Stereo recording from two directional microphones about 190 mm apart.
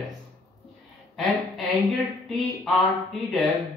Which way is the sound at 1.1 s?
Centre (ahead or behind).